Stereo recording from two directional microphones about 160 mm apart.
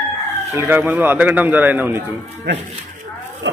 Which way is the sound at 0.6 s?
15° right (ahead or behind).